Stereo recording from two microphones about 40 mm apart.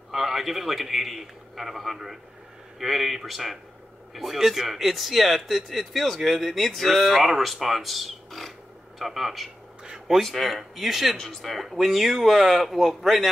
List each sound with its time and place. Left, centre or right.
0.1 s a man's voice: centre
9.8 s a sound: centre
10.1 s speech: centre